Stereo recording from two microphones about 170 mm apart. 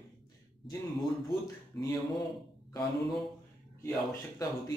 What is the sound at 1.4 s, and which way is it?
Speech, 20° left (ahead or behind).